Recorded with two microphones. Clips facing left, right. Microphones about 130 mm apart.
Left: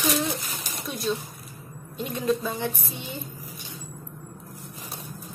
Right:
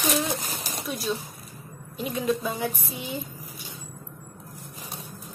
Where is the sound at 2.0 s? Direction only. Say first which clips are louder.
Left 1 dB; 5° right (ahead or behind).